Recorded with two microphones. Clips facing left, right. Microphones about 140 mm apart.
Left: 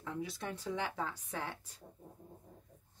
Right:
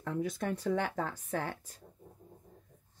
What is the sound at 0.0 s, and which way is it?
Speech, 50° right (ahead or behind).